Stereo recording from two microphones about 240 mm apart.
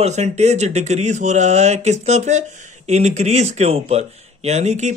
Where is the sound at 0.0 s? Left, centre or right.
Right.